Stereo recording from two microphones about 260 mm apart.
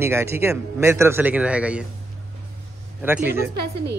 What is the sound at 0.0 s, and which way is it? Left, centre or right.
Speech, centre.